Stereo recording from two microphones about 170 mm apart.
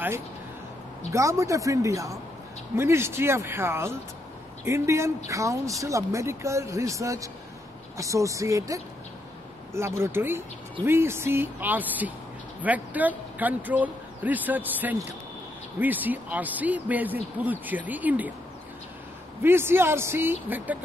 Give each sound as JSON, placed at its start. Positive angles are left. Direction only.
{"t": 1.1, "sound": "speech", "side_deg": -20}
{"t": 19.4, "sound": "speech", "side_deg": -15}